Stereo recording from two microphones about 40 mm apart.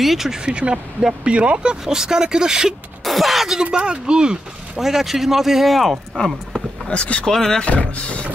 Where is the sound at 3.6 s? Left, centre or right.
Right.